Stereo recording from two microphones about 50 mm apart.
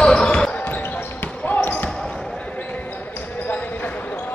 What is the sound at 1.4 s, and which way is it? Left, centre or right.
Basketball bounce, left.